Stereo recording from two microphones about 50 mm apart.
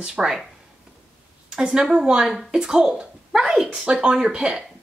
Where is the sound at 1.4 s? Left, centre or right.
Centre.